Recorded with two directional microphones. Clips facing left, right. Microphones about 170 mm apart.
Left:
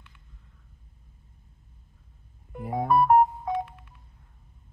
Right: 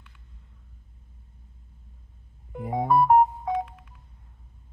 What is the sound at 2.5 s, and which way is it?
Music, 15° right (ahead or behind).